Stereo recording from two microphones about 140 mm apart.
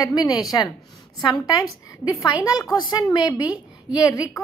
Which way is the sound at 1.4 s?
25° left (ahead or behind).